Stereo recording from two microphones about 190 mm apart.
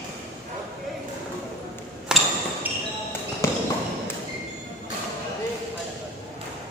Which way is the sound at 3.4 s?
15° left (ahead or behind).